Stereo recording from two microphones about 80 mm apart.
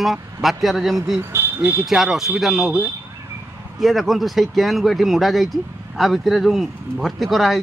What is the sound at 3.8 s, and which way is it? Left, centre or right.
Speech, centre.